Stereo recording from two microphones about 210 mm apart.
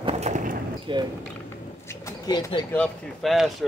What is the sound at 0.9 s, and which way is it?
Speech, 25° right (ahead or behind).